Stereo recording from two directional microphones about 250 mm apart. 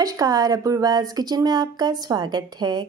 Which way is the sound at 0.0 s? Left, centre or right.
Centre.